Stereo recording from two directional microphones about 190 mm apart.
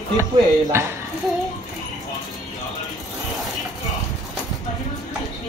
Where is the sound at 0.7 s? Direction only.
15° right (ahead or behind).